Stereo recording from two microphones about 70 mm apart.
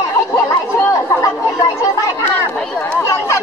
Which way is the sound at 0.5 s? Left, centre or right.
Left.